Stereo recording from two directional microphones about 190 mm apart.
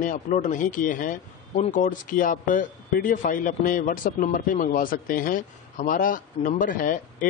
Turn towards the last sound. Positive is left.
turn(degrees=45)  # may be behind; listen again after turning